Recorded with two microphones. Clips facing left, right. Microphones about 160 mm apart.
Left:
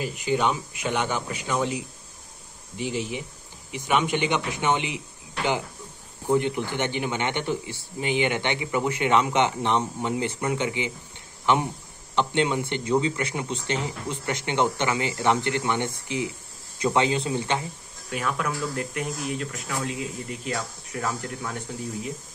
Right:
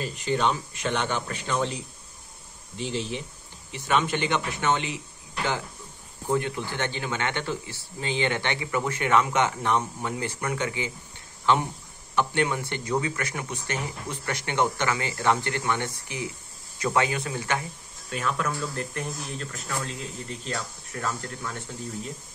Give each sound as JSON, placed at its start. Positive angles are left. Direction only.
{"t": 0.0, "sound": "speech", "side_deg": 10}
{"t": 6.2, "sound": "speech", "side_deg": 20}
{"t": 18.1, "sound": "speech", "side_deg": 10}